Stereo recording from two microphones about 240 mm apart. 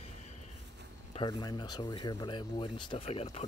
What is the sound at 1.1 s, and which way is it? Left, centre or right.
Speech, centre.